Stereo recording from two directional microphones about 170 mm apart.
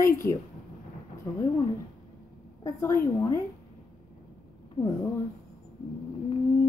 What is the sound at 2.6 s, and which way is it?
Speech, 20° left (ahead or behind).